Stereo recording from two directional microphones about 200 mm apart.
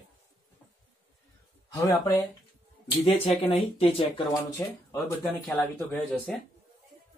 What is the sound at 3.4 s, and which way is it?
Speech, 30° left (ahead or behind).